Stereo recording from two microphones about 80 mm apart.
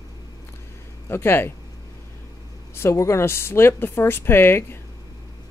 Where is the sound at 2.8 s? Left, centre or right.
Left.